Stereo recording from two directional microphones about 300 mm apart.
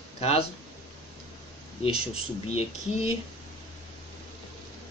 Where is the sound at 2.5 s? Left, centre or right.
Left.